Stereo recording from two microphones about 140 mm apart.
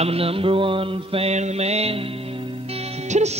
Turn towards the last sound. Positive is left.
turn(degrees=-55)  # may be behind; listen again after turning